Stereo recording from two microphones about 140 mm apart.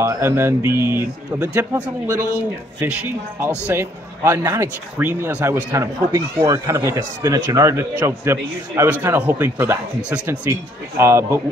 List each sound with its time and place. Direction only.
0.0 s a man's voice: 20° right (ahead or behind)
3.3 s a man's voice: 15° right (ahead or behind)